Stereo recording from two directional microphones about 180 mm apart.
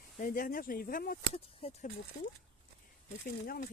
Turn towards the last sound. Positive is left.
turn(degrees=55)  # may be behind; listen again after turning